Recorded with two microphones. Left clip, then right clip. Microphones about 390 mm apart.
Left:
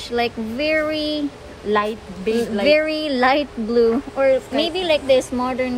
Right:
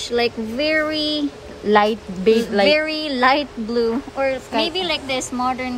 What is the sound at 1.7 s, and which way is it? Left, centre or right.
A woman's voice, right.